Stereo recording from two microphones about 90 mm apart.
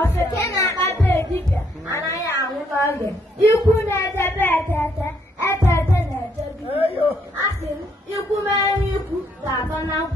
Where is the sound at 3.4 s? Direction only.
30° left (ahead or behind).